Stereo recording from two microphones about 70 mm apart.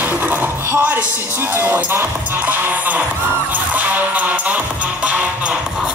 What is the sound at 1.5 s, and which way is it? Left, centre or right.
Music, right.